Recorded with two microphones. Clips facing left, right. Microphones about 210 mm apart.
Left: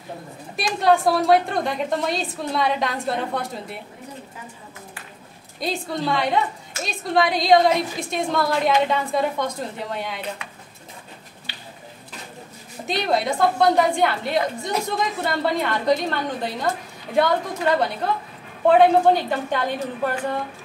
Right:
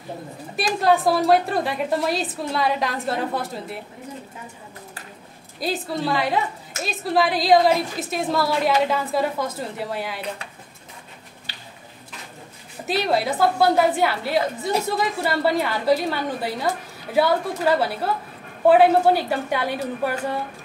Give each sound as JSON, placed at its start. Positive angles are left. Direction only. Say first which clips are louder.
{"t": 0.7, "sound": "a woman's voice", "louder": "left 1 dB", "side_deg": 0}
{"t": 5.6, "sound": "a woman's voice", "louder": "right 1 dB", "side_deg": 0}
{"t": 12.8, "sound": "a woman's voice", "louder": "right 1 dB", "side_deg": -5}